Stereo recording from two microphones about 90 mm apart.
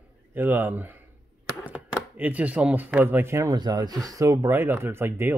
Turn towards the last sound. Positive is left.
turn(degrees=-25)  # may be behind; listen again after turning